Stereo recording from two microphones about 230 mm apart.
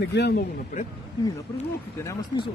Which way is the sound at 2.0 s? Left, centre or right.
Centre.